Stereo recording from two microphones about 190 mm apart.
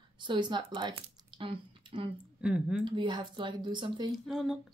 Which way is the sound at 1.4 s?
30° right (ahead or behind).